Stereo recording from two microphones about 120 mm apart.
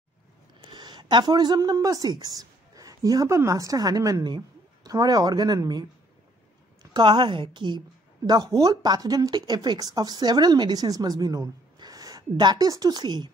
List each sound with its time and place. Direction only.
0.7 s a woman's voice: 40° right (ahead or behind)